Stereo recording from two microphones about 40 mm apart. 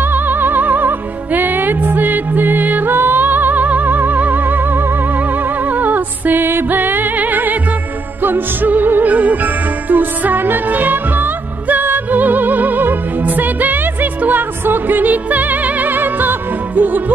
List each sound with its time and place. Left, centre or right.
0.0 s music: right
9.1 s music: right